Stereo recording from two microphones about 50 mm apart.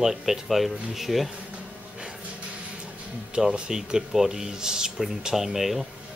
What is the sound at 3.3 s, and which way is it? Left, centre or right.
Speech, centre.